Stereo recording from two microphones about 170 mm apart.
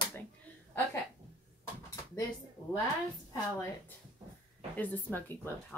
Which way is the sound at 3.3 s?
15° left (ahead or behind).